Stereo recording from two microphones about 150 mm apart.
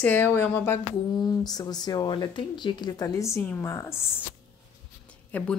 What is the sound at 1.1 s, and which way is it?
Speech, 25° left (ahead or behind).